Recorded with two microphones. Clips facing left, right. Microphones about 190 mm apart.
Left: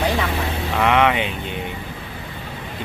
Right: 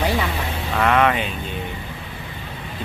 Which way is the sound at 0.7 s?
15° left (ahead or behind).